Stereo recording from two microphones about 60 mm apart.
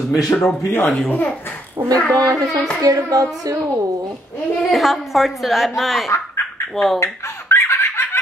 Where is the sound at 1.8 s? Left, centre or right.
Right.